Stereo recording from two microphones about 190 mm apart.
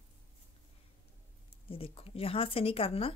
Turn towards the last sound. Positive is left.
turn(degrees=30)  # may be behind; listen again after turning